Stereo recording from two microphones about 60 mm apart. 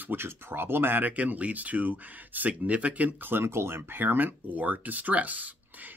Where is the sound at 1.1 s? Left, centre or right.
Right.